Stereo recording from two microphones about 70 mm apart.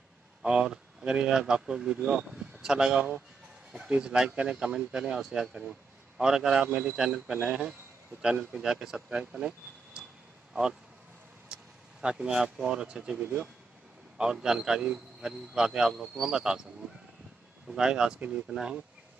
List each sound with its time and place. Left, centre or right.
0.4 s speech: centre
6.7 s speech: centre
11.4 s speech: centre
14.1 s speech: centre
17.6 s speech: centre